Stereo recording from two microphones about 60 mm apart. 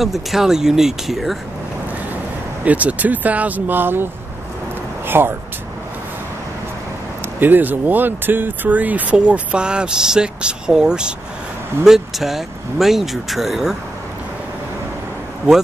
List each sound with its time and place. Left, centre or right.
0.0 s speech: centre
2.6 s speech: right
7.3 s speech: right; by 13.7 s centre